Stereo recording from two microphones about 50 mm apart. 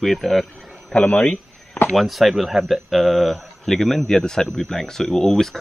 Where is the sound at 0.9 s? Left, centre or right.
Left.